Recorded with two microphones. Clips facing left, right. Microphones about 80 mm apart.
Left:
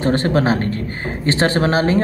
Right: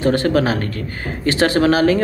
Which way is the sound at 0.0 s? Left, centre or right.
Left.